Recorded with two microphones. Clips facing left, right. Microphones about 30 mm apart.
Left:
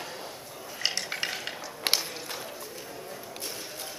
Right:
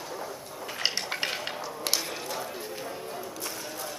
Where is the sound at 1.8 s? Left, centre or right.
Left.